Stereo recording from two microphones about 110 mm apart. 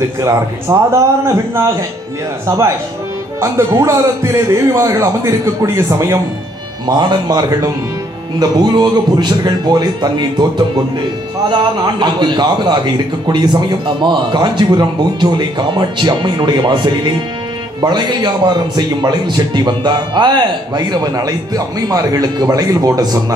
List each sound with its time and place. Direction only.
0.2 s a man's voice: 25° right (ahead or behind)
6.9 s a man's voice: 40° right (ahead or behind)